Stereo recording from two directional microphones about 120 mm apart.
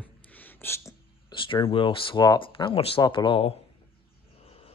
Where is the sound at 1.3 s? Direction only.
45° left (ahead or behind).